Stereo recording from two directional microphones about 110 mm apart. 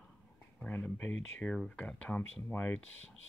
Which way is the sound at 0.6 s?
15° left (ahead or behind).